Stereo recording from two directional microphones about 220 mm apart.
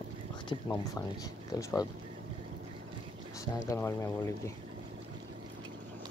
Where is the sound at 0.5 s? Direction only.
20° left (ahead or behind).